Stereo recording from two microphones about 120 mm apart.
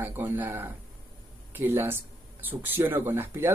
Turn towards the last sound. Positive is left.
turn(degrees=-20)  # may be behind; listen again after turning